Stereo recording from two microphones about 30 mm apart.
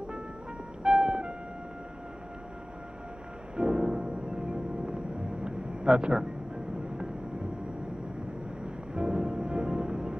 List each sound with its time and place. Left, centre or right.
0.8 s music: right
3.5 s music: right
8.6 s music: right